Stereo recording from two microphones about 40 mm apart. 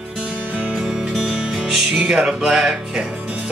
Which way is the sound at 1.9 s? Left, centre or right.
Right.